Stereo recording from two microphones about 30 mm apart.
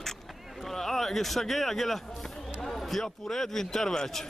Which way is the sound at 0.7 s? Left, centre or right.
Centre.